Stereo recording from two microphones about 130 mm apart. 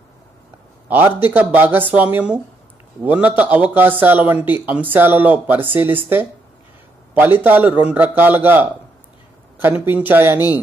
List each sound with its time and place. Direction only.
0.8 s speech: 15° right (ahead or behind)
7.2 s speech: 15° right (ahead or behind)